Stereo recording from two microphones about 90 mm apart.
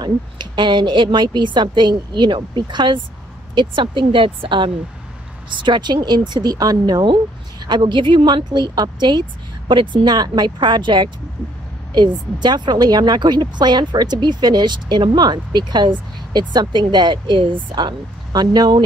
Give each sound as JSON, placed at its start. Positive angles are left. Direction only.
{"t": 0.0, "sound": "a woman's voice", "side_deg": -55}
{"t": 12.4, "sound": "speech", "side_deg": -55}